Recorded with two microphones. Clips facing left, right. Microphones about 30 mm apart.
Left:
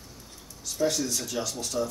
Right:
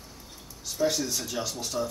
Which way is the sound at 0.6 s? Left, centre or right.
Centre.